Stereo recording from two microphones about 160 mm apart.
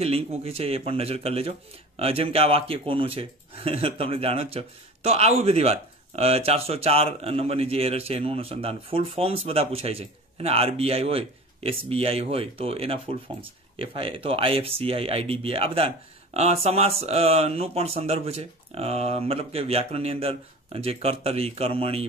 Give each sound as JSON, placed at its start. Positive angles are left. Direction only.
{"t": 0.0, "sound": "speech", "side_deg": -40}